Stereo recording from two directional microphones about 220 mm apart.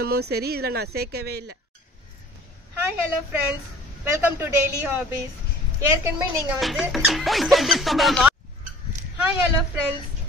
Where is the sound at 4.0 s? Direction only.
10° right (ahead or behind).